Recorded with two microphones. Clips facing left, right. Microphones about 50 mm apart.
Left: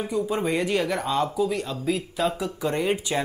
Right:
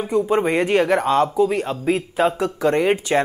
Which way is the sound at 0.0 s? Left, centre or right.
Right.